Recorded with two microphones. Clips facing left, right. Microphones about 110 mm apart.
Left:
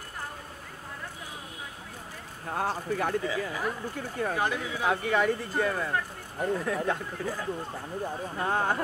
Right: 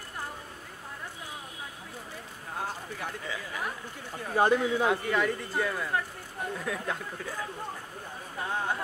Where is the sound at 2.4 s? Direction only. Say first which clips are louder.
Left 7 dB; 70° left (ahead or behind).